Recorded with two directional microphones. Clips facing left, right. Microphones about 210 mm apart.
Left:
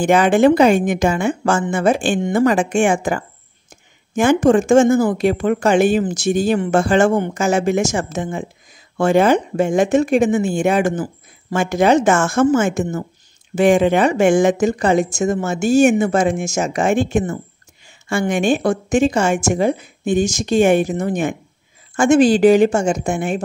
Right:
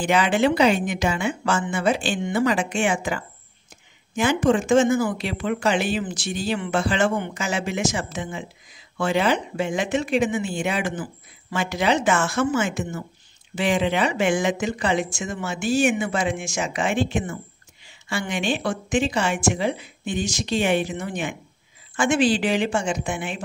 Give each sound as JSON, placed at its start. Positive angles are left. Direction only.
{"t": 0.0, "sound": "speech", "side_deg": 45}